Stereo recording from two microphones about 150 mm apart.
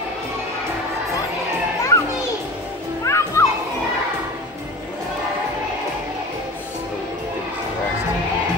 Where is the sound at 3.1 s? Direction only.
20° left (ahead or behind).